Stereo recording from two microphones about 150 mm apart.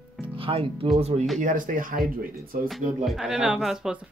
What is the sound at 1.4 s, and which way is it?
Speech, 65° right (ahead or behind).